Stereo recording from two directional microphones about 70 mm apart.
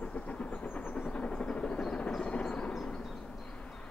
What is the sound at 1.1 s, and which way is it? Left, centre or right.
Vehicle, centre.